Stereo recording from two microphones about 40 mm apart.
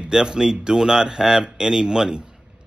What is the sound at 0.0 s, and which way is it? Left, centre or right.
Speech, centre.